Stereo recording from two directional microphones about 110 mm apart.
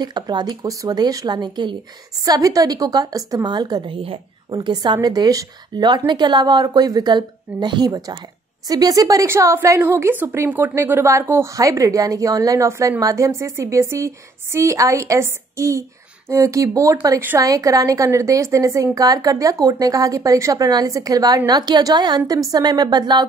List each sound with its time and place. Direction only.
0.0 s a woman's voice: 40° right (ahead or behind)
3.9 s a woman's voice: 55° right (ahead or behind)
4.6 s a woman's voice: 40° right (ahead or behind)